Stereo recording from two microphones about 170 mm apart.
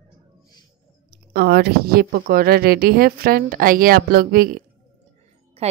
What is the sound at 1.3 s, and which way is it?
A woman's voice, 70° right (ahead or behind).